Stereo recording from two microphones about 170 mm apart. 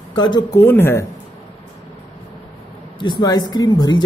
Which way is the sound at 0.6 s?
15° left (ahead or behind).